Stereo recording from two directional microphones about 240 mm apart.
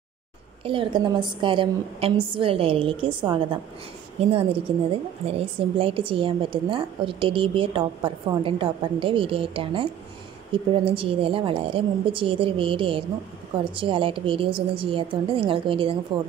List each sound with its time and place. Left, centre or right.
0.7 s a woman's voice: right